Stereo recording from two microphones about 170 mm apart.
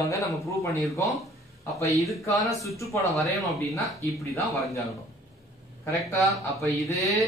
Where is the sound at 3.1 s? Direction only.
Centre (ahead or behind).